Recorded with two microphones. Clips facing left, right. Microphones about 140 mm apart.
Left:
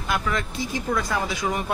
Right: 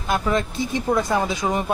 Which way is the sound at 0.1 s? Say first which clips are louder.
Right 5 dB; 25° right (ahead or behind).